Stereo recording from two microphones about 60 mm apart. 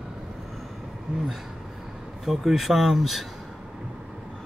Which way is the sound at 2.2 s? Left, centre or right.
Centre.